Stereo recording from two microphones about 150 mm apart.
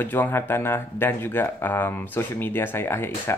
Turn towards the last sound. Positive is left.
turn(degrees=15)  # may be behind; listen again after turning